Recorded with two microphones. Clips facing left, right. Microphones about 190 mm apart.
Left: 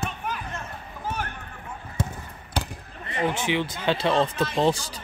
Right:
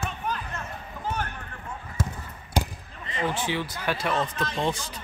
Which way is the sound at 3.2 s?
20° left (ahead or behind).